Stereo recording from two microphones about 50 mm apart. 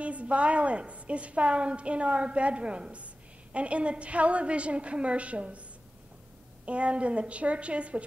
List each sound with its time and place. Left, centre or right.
0.0 s a woman's voice: right
6.6 s a woman's voice: right